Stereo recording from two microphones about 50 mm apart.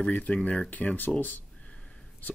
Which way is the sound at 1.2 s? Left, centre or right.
Left.